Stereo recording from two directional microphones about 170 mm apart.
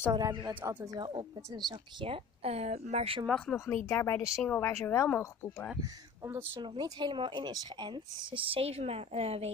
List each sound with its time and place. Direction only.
0.1 s speech: 20° right (ahead or behind)
0.6 s speech: 10° right (ahead or behind)
0.8 s speech: 25° right (ahead or behind)
3.3 s speech: 5° left (ahead or behind)
3.5 s speech: 15° left (ahead or behind)
5.8 s speech: 15° right (ahead or behind)
6.5 s speech: 30° right (ahead or behind)